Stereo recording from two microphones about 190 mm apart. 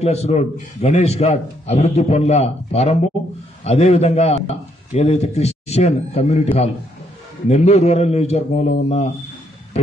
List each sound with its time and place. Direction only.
0.0 s a man's voice: 35° left (ahead or behind)